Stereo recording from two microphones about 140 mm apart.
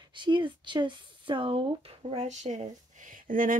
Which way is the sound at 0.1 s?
35° right (ahead or behind).